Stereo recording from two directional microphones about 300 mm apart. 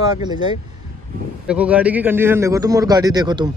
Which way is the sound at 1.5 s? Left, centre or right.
Centre.